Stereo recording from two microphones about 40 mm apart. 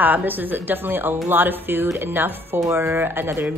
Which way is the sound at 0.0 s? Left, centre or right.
Right.